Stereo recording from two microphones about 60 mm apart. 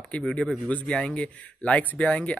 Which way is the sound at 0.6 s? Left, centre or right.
Left.